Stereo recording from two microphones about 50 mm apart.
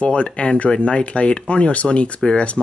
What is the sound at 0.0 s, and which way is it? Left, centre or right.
Speech, left.